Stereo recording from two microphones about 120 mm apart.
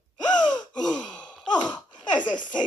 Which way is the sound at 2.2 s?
40° left (ahead or behind).